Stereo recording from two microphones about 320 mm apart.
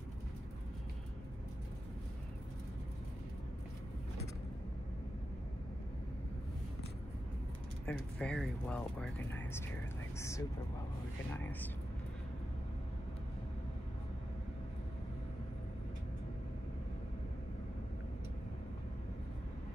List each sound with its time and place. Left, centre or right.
7.8 s speech: centre